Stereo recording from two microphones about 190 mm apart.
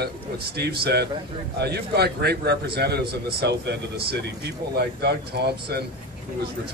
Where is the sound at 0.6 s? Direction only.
60° right (ahead or behind).